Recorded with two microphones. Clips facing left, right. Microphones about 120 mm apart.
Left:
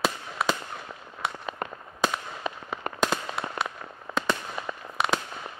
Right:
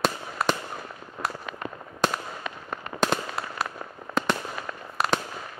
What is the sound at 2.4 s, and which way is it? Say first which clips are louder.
Fireworks: left 6 dB; 35° left (ahead or behind).